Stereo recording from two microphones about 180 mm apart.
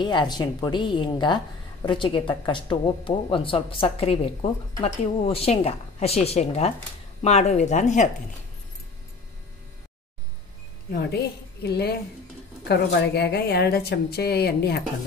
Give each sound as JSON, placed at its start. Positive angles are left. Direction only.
{"t": 0.0, "sound": "a woman's voice", "side_deg": 25}
{"t": 10.9, "sound": "a woman's voice", "side_deg": 65}